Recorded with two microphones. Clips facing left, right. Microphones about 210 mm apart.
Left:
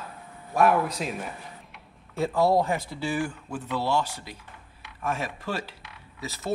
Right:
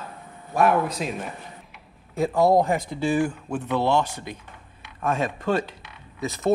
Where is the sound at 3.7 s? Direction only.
55° right (ahead or behind).